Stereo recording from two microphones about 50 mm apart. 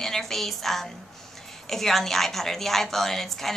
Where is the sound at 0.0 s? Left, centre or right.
Centre.